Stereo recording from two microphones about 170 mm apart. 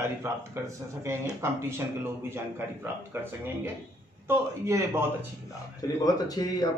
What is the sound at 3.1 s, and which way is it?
A man's voice, 15° right (ahead or behind).